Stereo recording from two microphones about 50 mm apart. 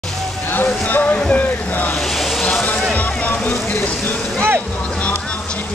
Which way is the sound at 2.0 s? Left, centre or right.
Centre.